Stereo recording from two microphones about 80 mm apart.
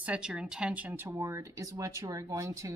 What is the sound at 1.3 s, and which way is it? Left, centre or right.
Speech, right.